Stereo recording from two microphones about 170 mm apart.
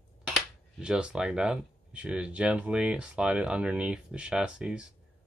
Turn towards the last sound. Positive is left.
turn(degrees=-5)  # may be behind; listen again after turning